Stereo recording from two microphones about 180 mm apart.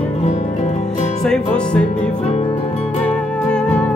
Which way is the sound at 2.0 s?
35° left (ahead or behind).